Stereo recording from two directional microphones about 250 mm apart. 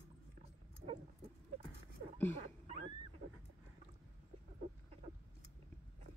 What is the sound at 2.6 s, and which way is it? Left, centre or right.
Wild animals, right.